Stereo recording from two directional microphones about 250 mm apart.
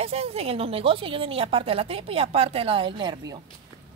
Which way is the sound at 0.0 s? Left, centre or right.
Right.